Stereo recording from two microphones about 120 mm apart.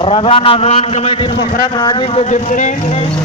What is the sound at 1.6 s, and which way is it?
Speech, 35° left (ahead or behind).